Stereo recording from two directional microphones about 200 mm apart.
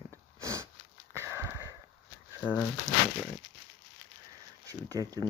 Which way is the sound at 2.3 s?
10° right (ahead or behind).